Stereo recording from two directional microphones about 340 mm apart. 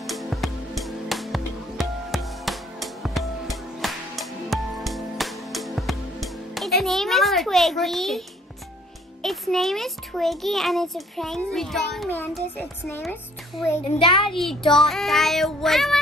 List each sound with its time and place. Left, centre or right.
0.0 s music: centre
9.2 s a child's voice: centre
14.3 s a child's voice: centre